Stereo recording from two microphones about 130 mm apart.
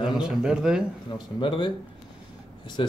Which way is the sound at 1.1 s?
40° left (ahead or behind).